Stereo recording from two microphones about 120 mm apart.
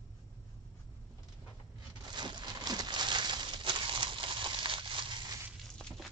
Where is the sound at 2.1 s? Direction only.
40° right (ahead or behind).